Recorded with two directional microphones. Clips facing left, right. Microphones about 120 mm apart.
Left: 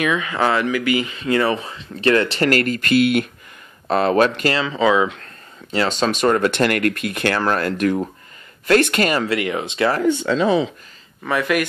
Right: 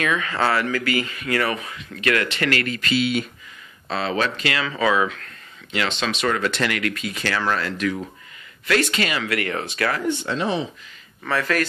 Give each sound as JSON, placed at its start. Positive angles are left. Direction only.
{"t": 0.0, "sound": "speech", "side_deg": 15}
{"t": 4.6, "sound": "speech", "side_deg": 20}
{"t": 5.7, "sound": "speech", "side_deg": 40}
{"t": 9.3, "sound": "speech", "side_deg": 15}
{"t": 11.2, "sound": "speech", "side_deg": 15}